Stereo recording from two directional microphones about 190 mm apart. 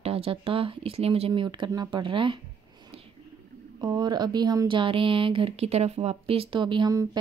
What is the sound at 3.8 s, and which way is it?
Speech, 20° right (ahead or behind).